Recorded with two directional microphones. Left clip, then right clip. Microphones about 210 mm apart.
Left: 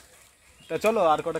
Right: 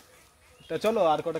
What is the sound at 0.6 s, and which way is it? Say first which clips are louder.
Speech: left 2 dB; 15° left (ahead or behind).